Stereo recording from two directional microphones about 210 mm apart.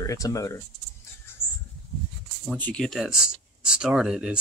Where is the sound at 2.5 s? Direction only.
5° left (ahead or behind).